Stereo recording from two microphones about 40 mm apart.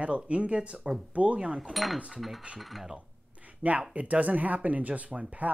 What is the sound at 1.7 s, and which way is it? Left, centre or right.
Speech, centre.